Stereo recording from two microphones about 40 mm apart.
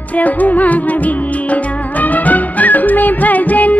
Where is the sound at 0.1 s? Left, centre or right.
Left.